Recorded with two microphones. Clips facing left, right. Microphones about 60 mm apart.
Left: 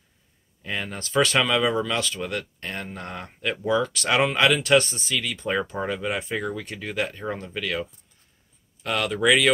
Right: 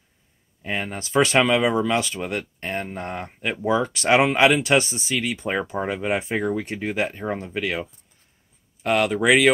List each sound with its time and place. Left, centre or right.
0.6 s speech: right